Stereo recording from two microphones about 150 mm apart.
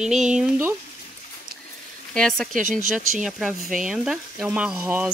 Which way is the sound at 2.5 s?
60° right (ahead or behind).